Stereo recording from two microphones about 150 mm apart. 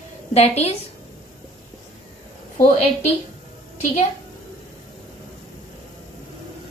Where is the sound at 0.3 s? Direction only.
45° left (ahead or behind).